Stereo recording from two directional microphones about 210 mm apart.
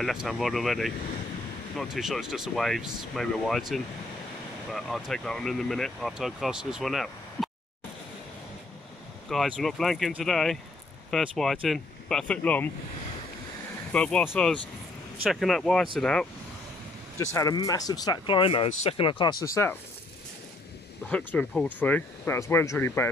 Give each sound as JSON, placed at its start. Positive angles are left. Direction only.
{"t": 0.0, "sound": "speech", "side_deg": 0}
{"t": 9.3, "sound": "speech", "side_deg": 0}
{"t": 13.9, "sound": "speech", "side_deg": 5}
{"t": 17.2, "sound": "speech", "side_deg": 15}
{"t": 21.1, "sound": "speech", "side_deg": 5}